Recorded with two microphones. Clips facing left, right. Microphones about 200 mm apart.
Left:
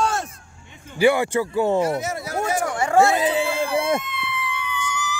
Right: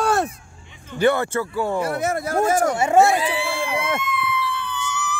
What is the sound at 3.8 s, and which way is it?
Police car, 30° left (ahead or behind).